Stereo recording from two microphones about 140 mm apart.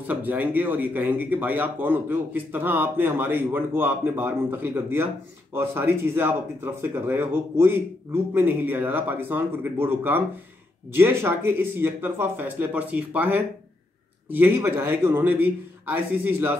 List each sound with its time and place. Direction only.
0.0 s speech: 10° right (ahead or behind)